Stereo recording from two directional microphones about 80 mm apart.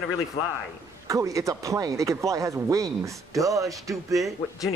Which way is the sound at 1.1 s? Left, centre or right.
Right.